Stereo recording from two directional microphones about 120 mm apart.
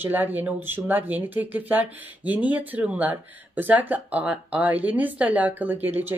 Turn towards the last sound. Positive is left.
turn(degrees=-15)  # may be behind; listen again after turning